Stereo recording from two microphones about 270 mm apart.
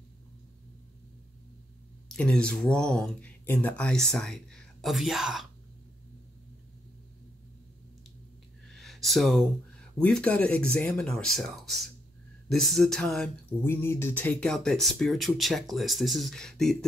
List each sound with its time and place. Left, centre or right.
2.0 s speech: centre
8.6 s speech: centre